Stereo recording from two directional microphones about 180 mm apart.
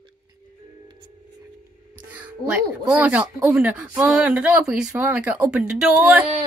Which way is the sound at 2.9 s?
5° right (ahead or behind).